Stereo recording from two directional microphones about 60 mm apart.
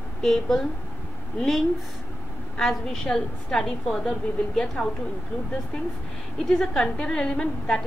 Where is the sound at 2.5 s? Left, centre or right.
Centre.